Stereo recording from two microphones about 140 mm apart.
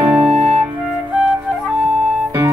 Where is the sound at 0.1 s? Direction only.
10° right (ahead or behind).